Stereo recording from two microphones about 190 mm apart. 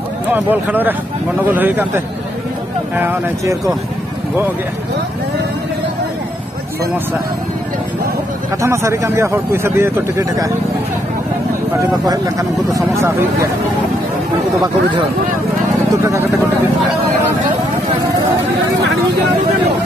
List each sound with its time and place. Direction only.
0.3 s speech: 10° right (ahead or behind)
3.0 s speech: 15° right (ahead or behind)
8.6 s speech: 15° right (ahead or behind)
12.0 s speech: 20° right (ahead or behind)